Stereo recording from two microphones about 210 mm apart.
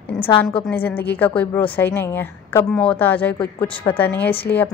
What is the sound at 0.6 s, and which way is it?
A woman's voice, 10° left (ahead or behind).